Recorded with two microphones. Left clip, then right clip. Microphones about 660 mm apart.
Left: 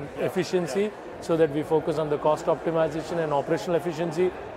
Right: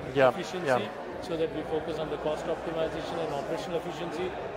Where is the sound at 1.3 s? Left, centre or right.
Left.